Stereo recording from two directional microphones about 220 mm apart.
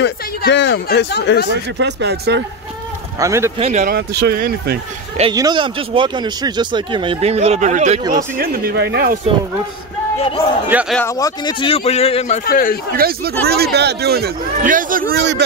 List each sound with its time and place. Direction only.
0.0 s speech: 55° left (ahead or behind)
1.8 s a man's voice: 50° right (ahead or behind)
3.2 s speech: 15° right (ahead or behind)
3.5 s a man's voice: 30° right (ahead or behind)
5.3 s speech: 20° right (ahead or behind)
8.4 s a man's voice: 45° right (ahead or behind)
10.7 s a man's voice: 5° right (ahead or behind)
11.0 s speech: 15° left (ahead or behind)
12.4 s speech: 40° left (ahead or behind)
12.9 s a man's voice: 45° right (ahead or behind)